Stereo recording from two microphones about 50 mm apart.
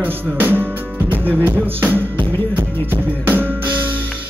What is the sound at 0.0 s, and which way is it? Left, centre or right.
Music, right.